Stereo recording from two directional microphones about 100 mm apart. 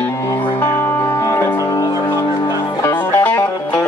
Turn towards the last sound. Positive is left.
turn(degrees=15)  # may be behind; listen again after turning